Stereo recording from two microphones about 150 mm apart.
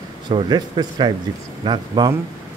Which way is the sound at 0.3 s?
30° right (ahead or behind).